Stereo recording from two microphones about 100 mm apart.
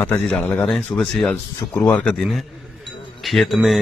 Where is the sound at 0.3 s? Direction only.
10° left (ahead or behind).